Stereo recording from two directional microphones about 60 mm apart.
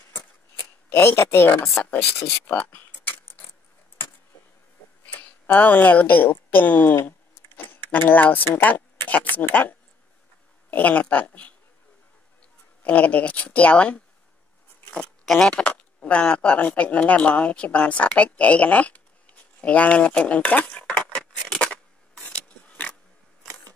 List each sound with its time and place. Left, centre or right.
0.8 s speech: left
2.2 s mechanisms: left
5.0 s speech: left
7.0 s a sound: left
8.6 s speech: left
12.8 s speech: left
15.2 s speech: centre
15.5 s speech: left
20.7 s a sound: left